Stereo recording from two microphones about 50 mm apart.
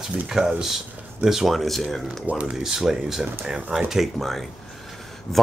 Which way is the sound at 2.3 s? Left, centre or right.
Right.